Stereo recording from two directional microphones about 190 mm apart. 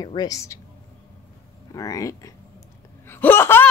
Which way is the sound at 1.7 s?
20° left (ahead or behind).